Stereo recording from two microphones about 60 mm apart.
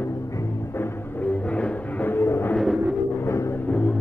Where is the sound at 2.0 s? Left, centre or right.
Left.